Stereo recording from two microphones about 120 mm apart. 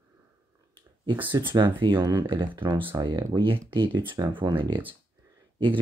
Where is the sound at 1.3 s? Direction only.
40° right (ahead or behind).